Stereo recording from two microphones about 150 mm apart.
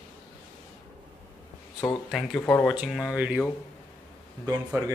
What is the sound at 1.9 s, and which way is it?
A man's voice, centre (ahead or behind).